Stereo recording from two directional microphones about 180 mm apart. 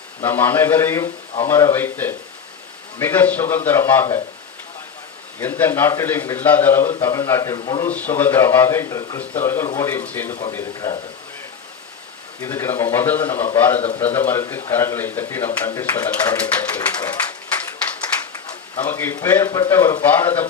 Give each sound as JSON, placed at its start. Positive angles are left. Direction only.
{"t": 0.2, "sound": "speech", "side_deg": 10}
{"t": 5.4, "sound": "speech", "side_deg": 10}
{"t": 7.8, "sound": "speech", "side_deg": 10}
{"t": 12.4, "sound": "speech", "side_deg": 15}
{"t": 18.9, "sound": "speech", "side_deg": 10}